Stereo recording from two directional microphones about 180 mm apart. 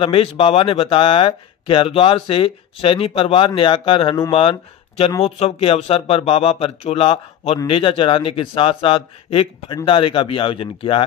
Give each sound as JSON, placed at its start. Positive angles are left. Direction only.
{"t": 0.0, "sound": "speech", "side_deg": 30}